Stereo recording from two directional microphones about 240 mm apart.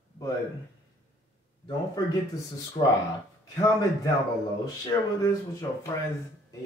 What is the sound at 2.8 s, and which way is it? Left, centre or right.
Speech, left.